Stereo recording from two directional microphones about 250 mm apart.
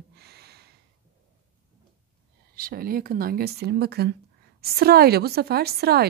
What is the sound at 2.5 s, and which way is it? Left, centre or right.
A woman's voice, right.